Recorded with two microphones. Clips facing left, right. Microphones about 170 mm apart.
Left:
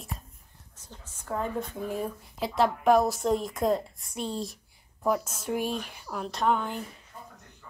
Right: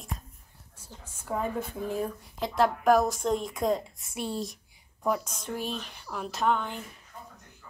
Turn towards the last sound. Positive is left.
turn(degrees=5)  # may be behind; listen again after turning